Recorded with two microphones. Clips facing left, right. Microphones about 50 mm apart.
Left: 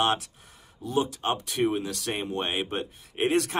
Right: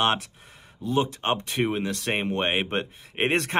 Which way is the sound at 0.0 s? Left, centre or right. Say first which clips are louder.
Right 1 dB; right.